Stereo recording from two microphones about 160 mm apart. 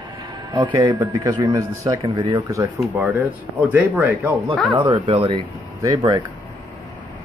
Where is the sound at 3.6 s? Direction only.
10° right (ahead or behind).